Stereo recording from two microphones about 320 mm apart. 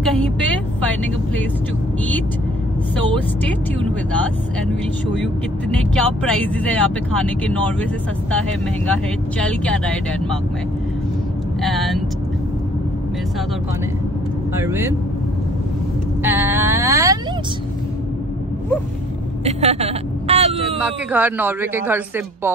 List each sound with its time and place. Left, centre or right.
0.0 s vehicle: centre
5.2 s speech: centre
8.8 s speech: centre
11.6 s speech: centre
14.7 s a woman's voice: centre
16.2 s vehicle: centre
19.4 s vehicle: centre
20.8 s a woman's voice: centre